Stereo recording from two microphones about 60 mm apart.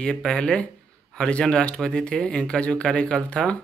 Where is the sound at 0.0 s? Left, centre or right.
Centre.